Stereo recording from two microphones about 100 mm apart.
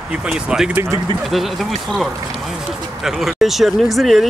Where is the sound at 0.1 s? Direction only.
10° right (ahead or behind).